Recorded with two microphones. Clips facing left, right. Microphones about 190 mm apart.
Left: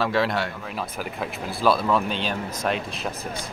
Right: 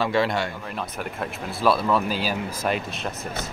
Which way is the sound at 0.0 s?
Centre (ahead or behind).